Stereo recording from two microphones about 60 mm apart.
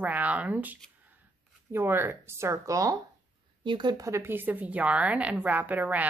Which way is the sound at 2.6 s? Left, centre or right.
Right.